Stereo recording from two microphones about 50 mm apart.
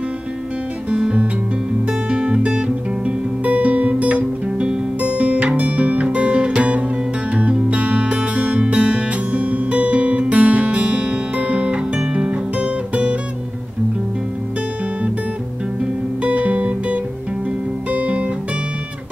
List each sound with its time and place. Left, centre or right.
0.8 s guitar: right
1.9 s music: right
16.2 s music: right
17.9 s guitar: right